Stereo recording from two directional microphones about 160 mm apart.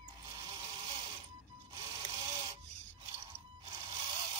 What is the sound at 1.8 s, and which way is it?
Printer, 35° right (ahead or behind).